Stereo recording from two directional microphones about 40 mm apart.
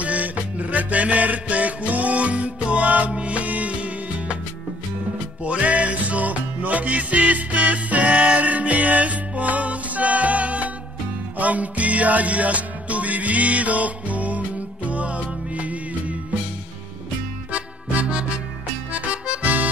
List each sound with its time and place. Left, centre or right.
0.0 s music: right
5.4 s music: right
17.5 s music: right
18.9 s accordion: right